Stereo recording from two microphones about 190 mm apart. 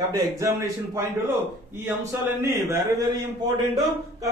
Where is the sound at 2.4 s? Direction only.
15° right (ahead or behind).